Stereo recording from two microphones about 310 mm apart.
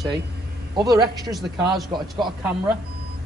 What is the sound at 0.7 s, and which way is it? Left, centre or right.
Speech, centre.